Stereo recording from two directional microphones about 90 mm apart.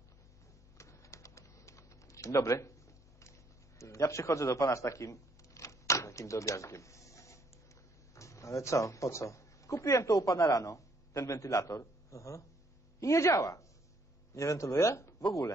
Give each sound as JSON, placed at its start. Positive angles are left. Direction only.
{"t": 0.7, "sound": "typing", "side_deg": 35}
{"t": 3.2, "sound": "a sound", "side_deg": 35}
{"t": 8.1, "sound": "speech", "side_deg": 35}